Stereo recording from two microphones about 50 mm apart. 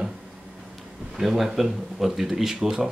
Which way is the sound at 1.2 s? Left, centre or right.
Centre.